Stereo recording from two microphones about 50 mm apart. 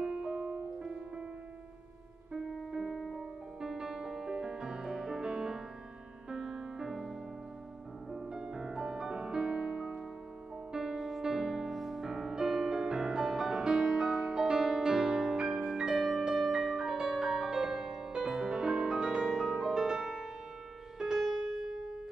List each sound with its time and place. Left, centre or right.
0.0 s music: centre
2.3 s music: centre